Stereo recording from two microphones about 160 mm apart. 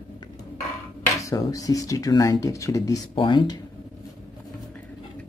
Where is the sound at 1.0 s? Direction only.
20° left (ahead or behind).